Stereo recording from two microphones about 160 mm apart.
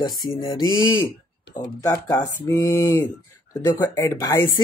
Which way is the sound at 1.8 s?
25° left (ahead or behind).